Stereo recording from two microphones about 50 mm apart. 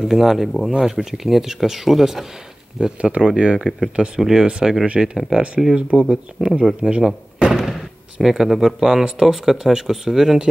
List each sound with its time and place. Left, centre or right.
0.1 s speech: centre
0.7 s speech: centre
2.8 s speech: right
7.1 s thunk: centre
8.2 s speech: centre